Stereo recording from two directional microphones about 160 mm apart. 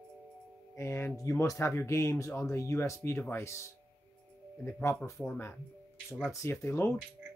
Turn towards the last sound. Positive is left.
turn(degrees=15)  # may be behind; listen again after turning